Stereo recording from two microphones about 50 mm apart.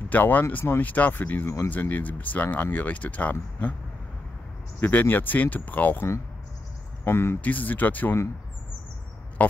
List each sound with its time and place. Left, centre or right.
0.1 s speech: left
1.1 s speech: left
4.7 s speech: left
7.1 s speech: left
7.4 s speech: left
9.4 s speech: left